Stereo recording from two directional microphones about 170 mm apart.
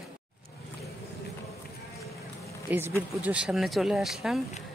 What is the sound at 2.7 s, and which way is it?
Speech, 10° right (ahead or behind).